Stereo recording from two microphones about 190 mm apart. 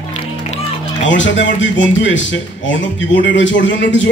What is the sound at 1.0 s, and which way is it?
A man's voice, 75° left (ahead or behind).